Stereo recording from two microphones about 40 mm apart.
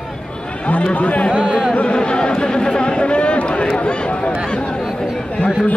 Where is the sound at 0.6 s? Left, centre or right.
Left.